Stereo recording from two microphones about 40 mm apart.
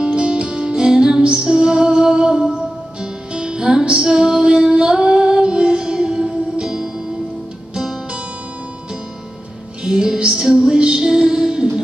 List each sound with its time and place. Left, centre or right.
0.0 s music: right
9.8 s music: centre